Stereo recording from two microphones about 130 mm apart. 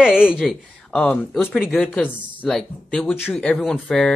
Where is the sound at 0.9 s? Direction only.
10° left (ahead or behind).